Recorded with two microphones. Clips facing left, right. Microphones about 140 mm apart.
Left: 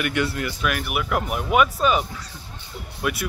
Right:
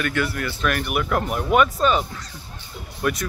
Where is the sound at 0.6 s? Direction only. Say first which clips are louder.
Right 4 dB; 5° left (ahead or behind).